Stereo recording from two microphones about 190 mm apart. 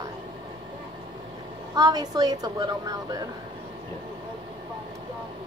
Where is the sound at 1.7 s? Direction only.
20° right (ahead or behind).